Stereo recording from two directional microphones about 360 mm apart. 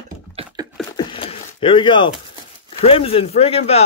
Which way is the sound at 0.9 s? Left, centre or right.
Centre.